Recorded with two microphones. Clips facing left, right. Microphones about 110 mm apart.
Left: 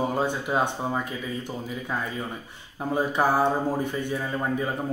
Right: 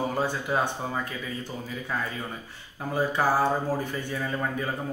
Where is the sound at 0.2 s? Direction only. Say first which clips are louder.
Left 2 dB; 20° left (ahead or behind).